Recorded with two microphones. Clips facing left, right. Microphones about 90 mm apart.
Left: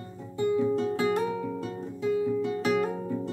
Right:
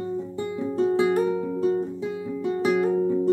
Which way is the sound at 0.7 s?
30° right (ahead or behind).